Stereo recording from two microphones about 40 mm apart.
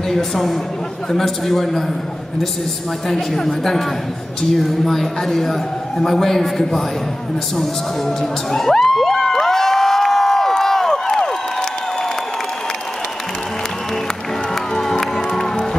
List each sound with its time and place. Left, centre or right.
0.1 s a woman's voice: centre
3.1 s a man's voice: centre
8.2 s cheering: centre
14.7 s music: centre